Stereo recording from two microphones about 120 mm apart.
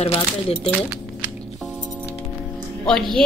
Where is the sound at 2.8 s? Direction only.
5° left (ahead or behind).